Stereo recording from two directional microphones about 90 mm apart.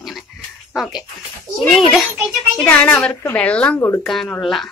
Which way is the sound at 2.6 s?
20° left (ahead or behind).